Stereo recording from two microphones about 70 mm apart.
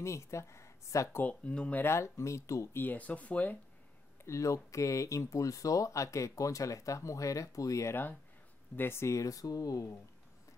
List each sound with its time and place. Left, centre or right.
0.0 s speech: left
1.2 s speech: centre
1.8 s speech: left
2.7 s speech: left
4.2 s speech: left
7.9 s speech: left